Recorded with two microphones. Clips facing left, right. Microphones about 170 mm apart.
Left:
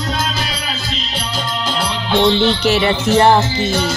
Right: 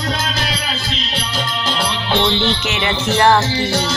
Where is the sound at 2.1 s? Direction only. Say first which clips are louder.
Left 5 dB; 40° left (ahead or behind).